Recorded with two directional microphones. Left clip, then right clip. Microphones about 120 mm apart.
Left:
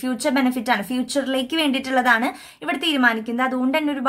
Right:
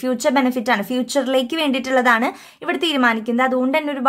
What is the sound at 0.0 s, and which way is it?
Speech, 40° right (ahead or behind).